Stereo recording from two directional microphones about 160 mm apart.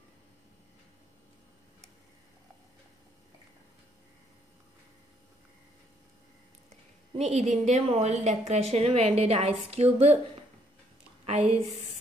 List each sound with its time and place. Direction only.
6.7 s speech: 45° right (ahead or behind)
11.2 s a woman's voice: 40° right (ahead or behind)